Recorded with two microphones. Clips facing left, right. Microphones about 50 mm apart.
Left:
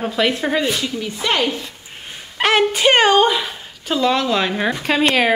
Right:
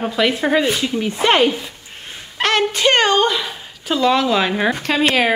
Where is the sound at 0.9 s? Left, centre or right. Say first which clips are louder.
Right 5 dB; right.